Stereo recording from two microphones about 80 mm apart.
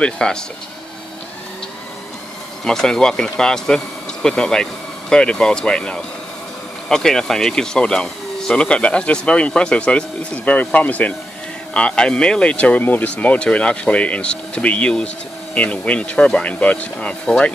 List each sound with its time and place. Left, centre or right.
0.0 s speech: centre
2.6 s speech: centre